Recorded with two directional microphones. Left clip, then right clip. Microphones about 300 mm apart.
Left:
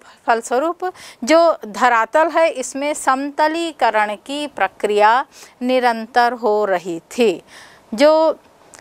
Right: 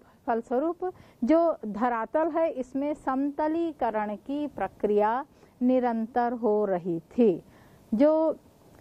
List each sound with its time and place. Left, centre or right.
0.2 s a woman's voice: centre
6.3 s a woman's voice: centre
6.6 s a woman's voice: centre